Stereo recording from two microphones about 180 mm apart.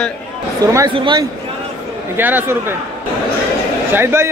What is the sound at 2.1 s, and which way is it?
Speech, 10° right (ahead or behind).